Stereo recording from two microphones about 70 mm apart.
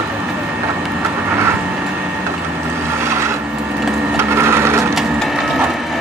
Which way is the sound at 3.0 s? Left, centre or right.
Right.